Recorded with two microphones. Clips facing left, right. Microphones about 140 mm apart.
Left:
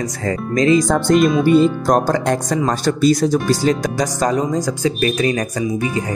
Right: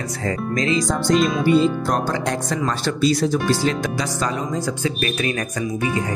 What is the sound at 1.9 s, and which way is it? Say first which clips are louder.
Speech: left 6 dB; 45° left (ahead or behind).